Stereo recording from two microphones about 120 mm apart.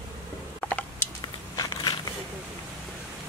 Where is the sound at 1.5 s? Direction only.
30° left (ahead or behind).